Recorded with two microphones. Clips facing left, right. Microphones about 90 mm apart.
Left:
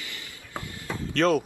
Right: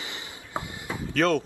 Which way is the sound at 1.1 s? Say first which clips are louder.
Left 1 dB; centre (ahead or behind).